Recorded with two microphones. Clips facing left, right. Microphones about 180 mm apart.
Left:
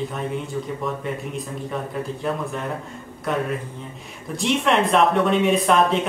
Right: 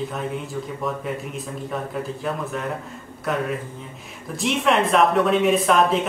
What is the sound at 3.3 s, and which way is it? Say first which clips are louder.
Speech: even; centre (ahead or behind).